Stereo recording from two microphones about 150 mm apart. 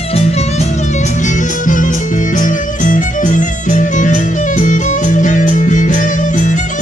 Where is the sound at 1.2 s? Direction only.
55° left (ahead or behind).